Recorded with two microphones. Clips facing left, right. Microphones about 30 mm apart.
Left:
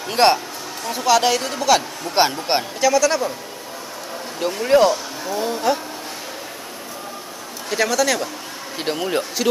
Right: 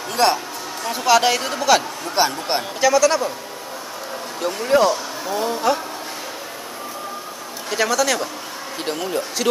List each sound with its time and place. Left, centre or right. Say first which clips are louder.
0.1 s a woman's voice: left 2 dB; left
0.8 s a woman's voice: right 1 dB; centre
4.4 s a woman's voice: left 2 dB; centre
7.7 s a woman's voice: even; centre
8.7 s speech: left 2 dB; centre
9.4 s a woman's voice: even; centre